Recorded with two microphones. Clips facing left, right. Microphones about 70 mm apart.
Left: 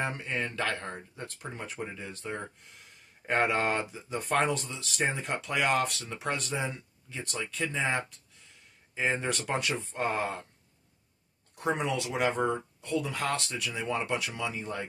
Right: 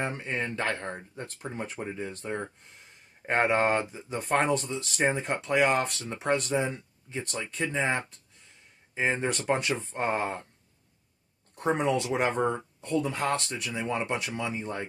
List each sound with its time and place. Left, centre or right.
0.0 s speech: right
11.5 s speech: right